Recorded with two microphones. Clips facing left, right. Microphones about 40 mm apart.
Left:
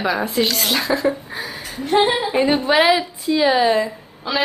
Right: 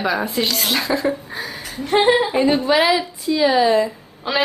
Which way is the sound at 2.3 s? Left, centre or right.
Centre.